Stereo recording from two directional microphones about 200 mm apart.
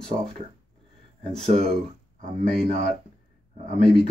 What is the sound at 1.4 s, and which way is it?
Speech, 30° right (ahead or behind).